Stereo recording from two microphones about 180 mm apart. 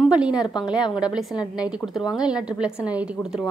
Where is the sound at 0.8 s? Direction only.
25° left (ahead or behind).